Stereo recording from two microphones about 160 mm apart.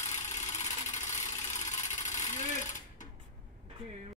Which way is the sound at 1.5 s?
50° left (ahead or behind).